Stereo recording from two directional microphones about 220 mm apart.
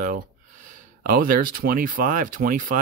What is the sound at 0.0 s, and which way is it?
Speech, 35° right (ahead or behind).